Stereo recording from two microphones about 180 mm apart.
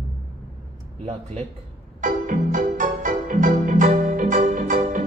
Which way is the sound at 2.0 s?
45° right (ahead or behind).